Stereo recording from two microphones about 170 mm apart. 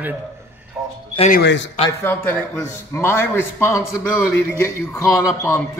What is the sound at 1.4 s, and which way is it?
Speech, 90° left.